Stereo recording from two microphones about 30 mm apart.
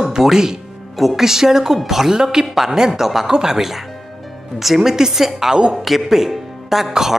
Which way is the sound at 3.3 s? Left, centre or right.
Right.